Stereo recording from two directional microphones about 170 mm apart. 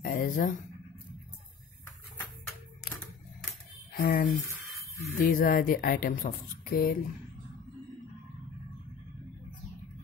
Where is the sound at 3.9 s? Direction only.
60° left (ahead or behind).